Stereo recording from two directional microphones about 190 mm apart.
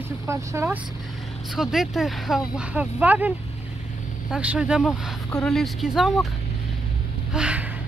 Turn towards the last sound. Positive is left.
turn(degrees=-5)  # may be behind; listen again after turning